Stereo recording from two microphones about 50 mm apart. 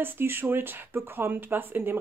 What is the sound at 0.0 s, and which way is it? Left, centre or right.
Speech, right.